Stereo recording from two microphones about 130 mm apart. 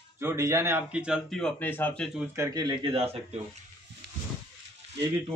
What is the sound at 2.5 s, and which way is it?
Speech, 35° right (ahead or behind).